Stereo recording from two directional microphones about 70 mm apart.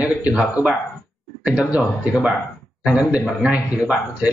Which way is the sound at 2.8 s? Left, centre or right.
Centre.